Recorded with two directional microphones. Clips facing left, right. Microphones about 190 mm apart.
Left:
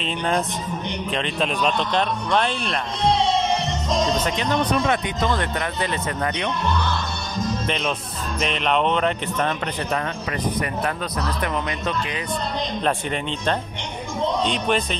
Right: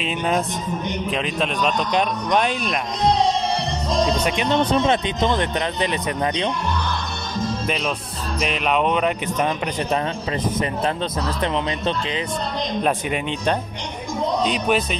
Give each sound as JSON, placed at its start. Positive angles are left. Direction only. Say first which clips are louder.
{"t": 1.1, "sound": "a man's voice", "louder": "left 1 dB", "side_deg": 0}
{"t": 1.9, "sound": "speech", "louder": "right 2 dB", "side_deg": -15}
{"t": 3.3, "sound": "music", "louder": "left 1 dB", "side_deg": -35}
{"t": 4.5, "sound": "speech", "louder": "right 3 dB", "side_deg": -25}
{"t": 7.6, "sound": "speech", "louder": "right 1 dB", "side_deg": -5}
{"t": 11.4, "sound": "speech", "louder": "right 5 dB", "side_deg": -25}
{"t": 12.8, "sound": "speech", "louder": "right 1 dB", "side_deg": -10}